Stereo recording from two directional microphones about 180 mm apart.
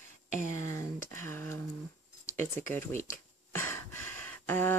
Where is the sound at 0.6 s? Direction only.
15° left (ahead or behind).